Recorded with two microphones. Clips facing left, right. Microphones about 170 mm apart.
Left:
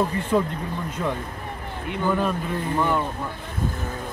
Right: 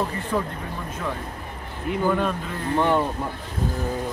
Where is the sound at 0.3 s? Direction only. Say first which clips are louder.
Left 4 dB; 15° left (ahead or behind).